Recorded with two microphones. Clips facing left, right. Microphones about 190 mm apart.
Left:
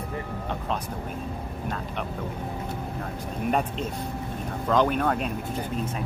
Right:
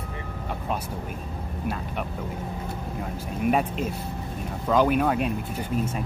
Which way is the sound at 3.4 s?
5° right (ahead or behind).